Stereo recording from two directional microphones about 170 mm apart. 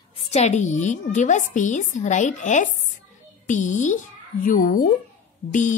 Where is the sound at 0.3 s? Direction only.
40° left (ahead or behind).